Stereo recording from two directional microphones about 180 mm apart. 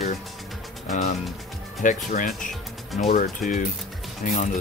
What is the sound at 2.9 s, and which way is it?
Speech, centre (ahead or behind).